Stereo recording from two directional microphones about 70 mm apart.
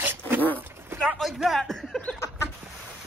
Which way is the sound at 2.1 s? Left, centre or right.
Left.